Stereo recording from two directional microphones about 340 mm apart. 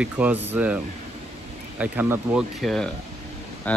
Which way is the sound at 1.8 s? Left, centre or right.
Centre.